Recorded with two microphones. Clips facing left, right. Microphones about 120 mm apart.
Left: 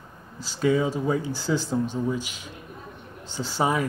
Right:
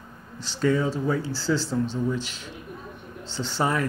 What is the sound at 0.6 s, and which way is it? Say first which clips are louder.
Speech: left 1 dB; 15° left (ahead or behind).